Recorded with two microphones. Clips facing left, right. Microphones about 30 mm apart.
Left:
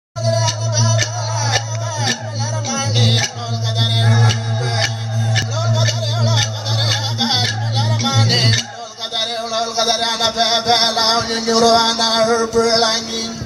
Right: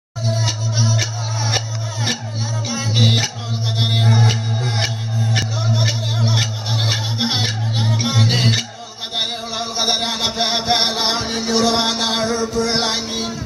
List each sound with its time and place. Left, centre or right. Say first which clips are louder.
0.2 s music: left 4 dB; left
2.7 s music: left 3 dB; left
3.0 s music: right 1 dB; left
4.7 s music: left 2 dB; left
9.2 s music: left 4 dB; left
11.2 s music: left 3 dB; left
11.5 s music: left 5 dB; left
12.7 s music: left 4 dB; left